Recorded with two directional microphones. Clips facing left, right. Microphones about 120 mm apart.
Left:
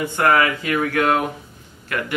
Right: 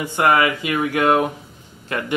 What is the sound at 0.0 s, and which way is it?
Speech, 15° right (ahead or behind).